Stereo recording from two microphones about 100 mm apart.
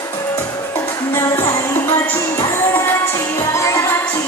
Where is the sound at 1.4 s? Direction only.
40° left (ahead or behind).